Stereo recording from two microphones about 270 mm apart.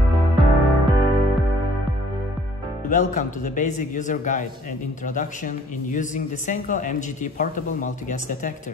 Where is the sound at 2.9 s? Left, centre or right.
Left.